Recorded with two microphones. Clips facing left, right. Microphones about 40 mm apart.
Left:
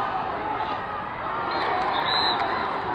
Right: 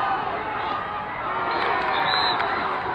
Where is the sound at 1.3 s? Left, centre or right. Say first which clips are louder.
Right 2 dB; right.